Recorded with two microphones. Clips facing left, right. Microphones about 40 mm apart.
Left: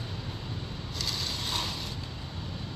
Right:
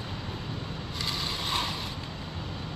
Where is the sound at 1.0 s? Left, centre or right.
Centre.